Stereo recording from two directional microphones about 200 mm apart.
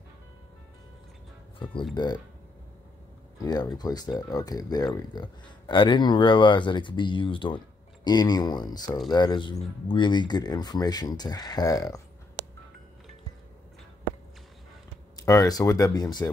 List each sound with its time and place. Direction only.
2.0 s speech: 20° left (ahead or behind)
3.4 s speech: 20° left (ahead or behind)
15.1 s speech: 20° left (ahead or behind)